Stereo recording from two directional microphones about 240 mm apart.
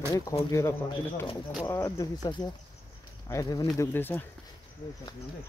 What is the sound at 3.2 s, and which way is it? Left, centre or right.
Speech, centre.